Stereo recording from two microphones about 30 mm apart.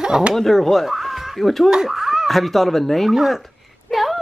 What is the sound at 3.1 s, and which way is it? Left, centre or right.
Speech, centre.